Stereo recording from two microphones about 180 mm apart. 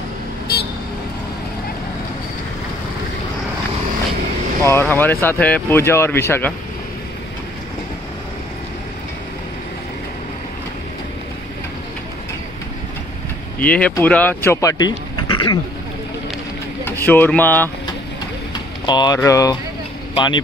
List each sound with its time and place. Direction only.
4.6 s speech: 10° left (ahead or behind)
13.6 s speech: 5° left (ahead or behind); by 15.6 s 25° left (ahead or behind)
16.8 s speech: 10° left (ahead or behind)
18.5 s vehicle: 25° left (ahead or behind)
19.1 s speech: 20° left (ahead or behind)